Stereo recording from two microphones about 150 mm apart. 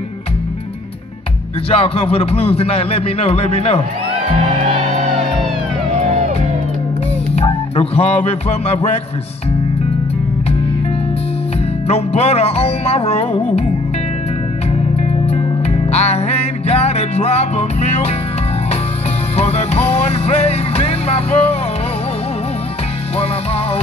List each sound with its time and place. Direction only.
1.7 s speech: 40° left (ahead or behind)
7.3 s music: 40° left (ahead or behind)
11.9 s music: 45° left (ahead or behind)
15.0 s music: 45° left (ahead or behind)
19.3 s music: 45° left (ahead or behind)